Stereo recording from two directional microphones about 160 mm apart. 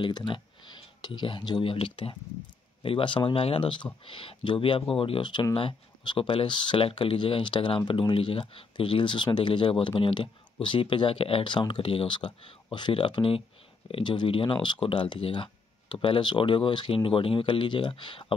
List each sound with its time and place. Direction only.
0.0 s speech: 30° left (ahead or behind)